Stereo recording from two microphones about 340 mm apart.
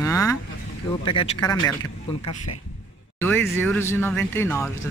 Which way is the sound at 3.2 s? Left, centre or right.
Centre.